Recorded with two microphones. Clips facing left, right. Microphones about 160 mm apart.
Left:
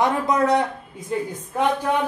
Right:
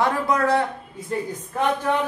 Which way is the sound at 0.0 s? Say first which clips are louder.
Left 1 dB; 20° left (ahead or behind).